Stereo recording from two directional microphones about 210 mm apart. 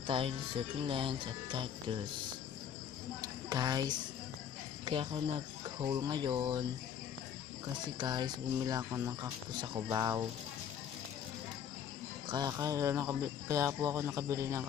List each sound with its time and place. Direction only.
0.0 s speech: 25° right (ahead or behind)
3.2 s speech: 20° right (ahead or behind)
7.6 s speech: 20° right (ahead or behind)
12.3 s speech: 15° right (ahead or behind)